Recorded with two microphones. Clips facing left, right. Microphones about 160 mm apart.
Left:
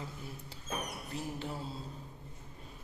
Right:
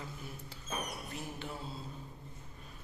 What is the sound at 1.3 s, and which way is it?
Mantra, 35° left (ahead or behind).